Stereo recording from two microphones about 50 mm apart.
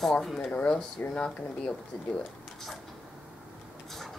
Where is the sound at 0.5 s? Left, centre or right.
Left.